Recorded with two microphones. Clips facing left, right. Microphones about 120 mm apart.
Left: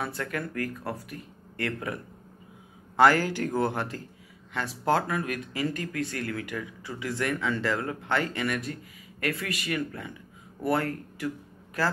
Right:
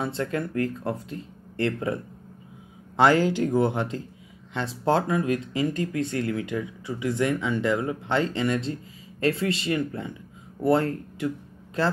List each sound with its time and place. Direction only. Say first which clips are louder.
0.0 s speech: right 5 dB; 25° right (ahead or behind)
3.0 s speech: right 2 dB; 20° right (ahead or behind)